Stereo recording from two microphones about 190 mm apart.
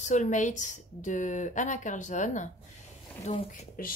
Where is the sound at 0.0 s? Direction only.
40° left (ahead or behind).